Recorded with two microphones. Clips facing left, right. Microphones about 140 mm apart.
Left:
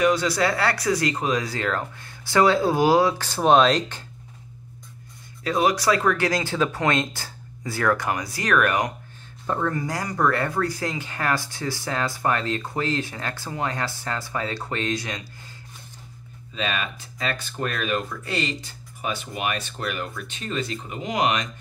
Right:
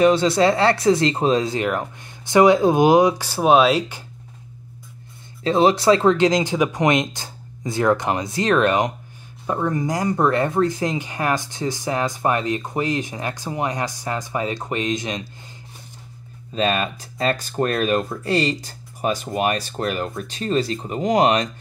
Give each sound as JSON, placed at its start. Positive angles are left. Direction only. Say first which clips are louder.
{"t": 0.0, "sound": "speech", "louder": "right 5 dB", "side_deg": -25}
{"t": 5.4, "sound": "speech", "louder": "right 5 dB", "side_deg": -25}
{"t": 16.5, "sound": "speech", "louder": "right 7 dB", "side_deg": -40}